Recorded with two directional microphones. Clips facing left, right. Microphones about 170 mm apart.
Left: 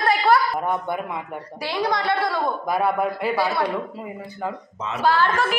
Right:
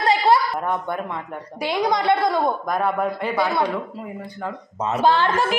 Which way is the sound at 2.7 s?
5° left (ahead or behind).